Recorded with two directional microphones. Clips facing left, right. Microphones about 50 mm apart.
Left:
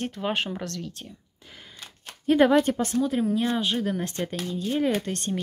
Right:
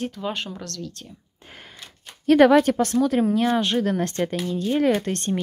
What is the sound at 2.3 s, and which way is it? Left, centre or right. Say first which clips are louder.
Speech: right 4 dB; right.